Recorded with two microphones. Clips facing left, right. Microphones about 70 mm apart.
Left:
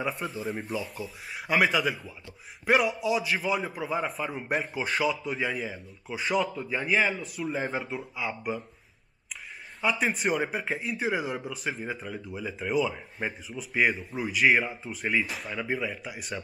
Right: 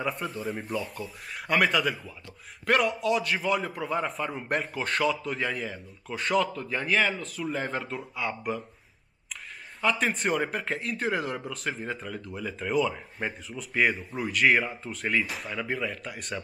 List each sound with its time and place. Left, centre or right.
0.0 s a man's voice: centre
9.8 s a man's voice: centre